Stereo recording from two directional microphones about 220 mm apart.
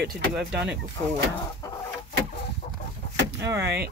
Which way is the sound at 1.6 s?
15° left (ahead or behind).